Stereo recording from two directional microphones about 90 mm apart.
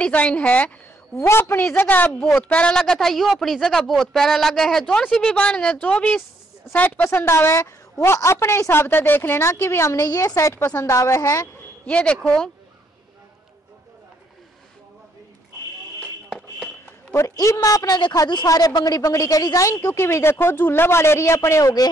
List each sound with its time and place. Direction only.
0.0 s speech: 15° left (ahead or behind)
1.2 s a woman's voice: 30° left (ahead or behind)
11.0 s speech: 35° left (ahead or behind)
11.8 s speech: 15° left (ahead or behind)
16.3 s a sound: centre (ahead or behind)
17.1 s speech: 35° left (ahead or behind)